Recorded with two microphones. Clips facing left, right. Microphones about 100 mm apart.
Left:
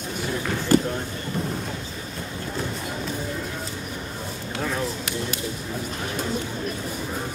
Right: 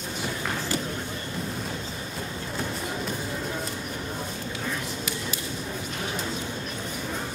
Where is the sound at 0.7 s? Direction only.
55° left (ahead or behind).